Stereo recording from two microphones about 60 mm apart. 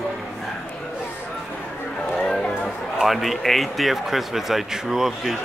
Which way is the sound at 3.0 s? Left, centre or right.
Centre.